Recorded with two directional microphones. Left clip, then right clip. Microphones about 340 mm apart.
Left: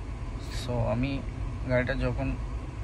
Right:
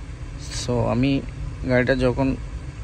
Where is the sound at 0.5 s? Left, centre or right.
Centre.